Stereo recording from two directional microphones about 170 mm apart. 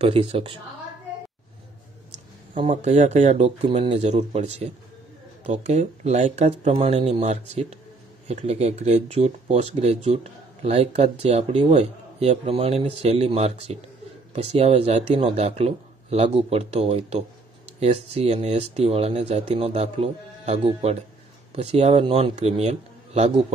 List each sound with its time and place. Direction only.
0.0 s speech: 30° right (ahead or behind)
2.7 s speech: 45° right (ahead or behind)